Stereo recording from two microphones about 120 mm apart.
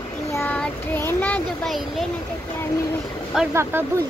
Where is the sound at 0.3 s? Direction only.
20° left (ahead or behind).